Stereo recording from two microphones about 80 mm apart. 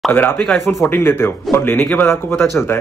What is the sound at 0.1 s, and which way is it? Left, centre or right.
A man's voice, left.